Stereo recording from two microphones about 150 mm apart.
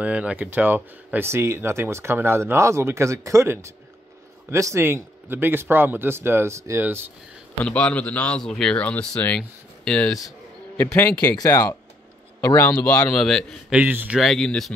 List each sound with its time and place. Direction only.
0.0 s speech: 10° right (ahead or behind)
7.6 s speech: 10° left (ahead or behind)
11.3 s a man's voice: 25° left (ahead or behind); by 14.7 s 5° left (ahead or behind)